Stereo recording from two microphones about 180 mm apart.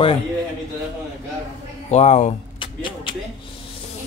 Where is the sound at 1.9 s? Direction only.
40° left (ahead or behind).